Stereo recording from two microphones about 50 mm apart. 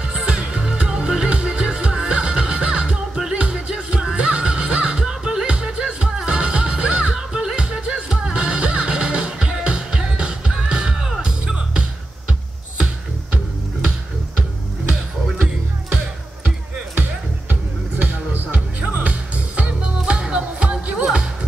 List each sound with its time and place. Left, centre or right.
0.0 s music: right
17.5 s music: right; by 21.3 s centre